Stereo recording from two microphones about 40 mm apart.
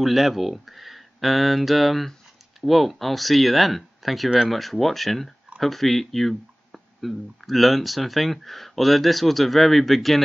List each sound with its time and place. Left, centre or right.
0.0 s speech: centre